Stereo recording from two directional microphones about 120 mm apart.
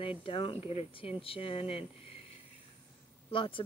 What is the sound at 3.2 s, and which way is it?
Speech, 45° left (ahead or behind).